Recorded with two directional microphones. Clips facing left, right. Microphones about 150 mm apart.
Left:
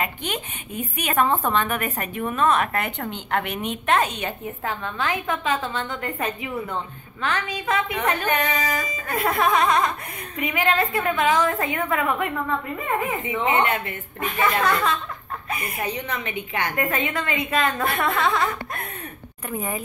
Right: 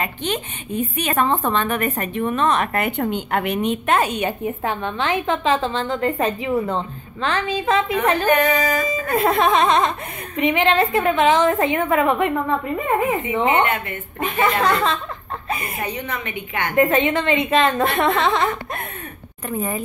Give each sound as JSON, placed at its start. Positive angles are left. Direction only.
{"t": 0.0, "sound": "a woman's voice", "side_deg": 10}
{"t": 3.1, "sound": "a woman's voice", "side_deg": -10}
{"t": 3.4, "sound": "a woman's voice", "side_deg": 0}
{"t": 14.2, "sound": "a woman's voice", "side_deg": -25}
{"t": 16.7, "sound": "a woman's voice", "side_deg": -25}
{"t": 19.5, "sound": "a woman's voice", "side_deg": 10}